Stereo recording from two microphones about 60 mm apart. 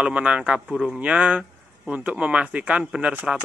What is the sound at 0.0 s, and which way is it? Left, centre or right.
Speech, right.